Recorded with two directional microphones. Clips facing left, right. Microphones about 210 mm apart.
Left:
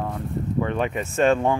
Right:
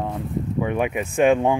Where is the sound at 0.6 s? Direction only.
10° right (ahead or behind).